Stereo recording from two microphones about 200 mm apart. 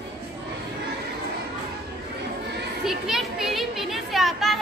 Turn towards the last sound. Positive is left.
turn(degrees=0)  # may be behind; listen again after turning